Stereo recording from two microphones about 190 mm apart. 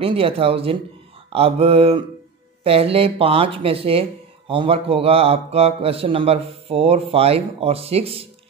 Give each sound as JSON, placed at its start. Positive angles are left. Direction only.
{"t": 0.0, "sound": "a man's voice", "side_deg": -30}